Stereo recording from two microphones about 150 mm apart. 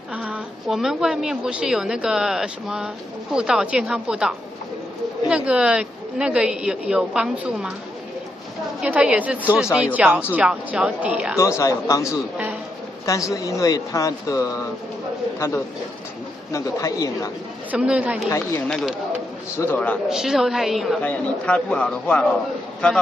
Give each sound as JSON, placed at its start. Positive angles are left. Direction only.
{"t": 0.1, "sound": "a woman's voice", "side_deg": -5}
{"t": 8.8, "sound": "a woman's voice", "side_deg": -5}
{"t": 11.3, "sound": "speech", "side_deg": 20}
{"t": 17.6, "sound": "a woman's voice", "side_deg": -5}
{"t": 19.5, "sound": "a man's voice", "side_deg": 15}
{"t": 20.1, "sound": "a woman's voice", "side_deg": -5}
{"t": 21.0, "sound": "a man's voice", "side_deg": 10}